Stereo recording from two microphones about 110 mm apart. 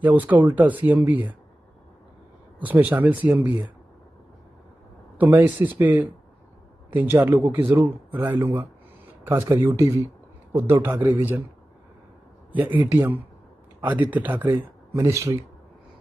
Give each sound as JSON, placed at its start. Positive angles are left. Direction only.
{"t": 0.0, "sound": "speech", "side_deg": -15}
{"t": 2.6, "sound": "speech", "side_deg": -15}
{"t": 5.1, "sound": "speech", "side_deg": -15}
{"t": 12.5, "sound": "speech", "side_deg": -15}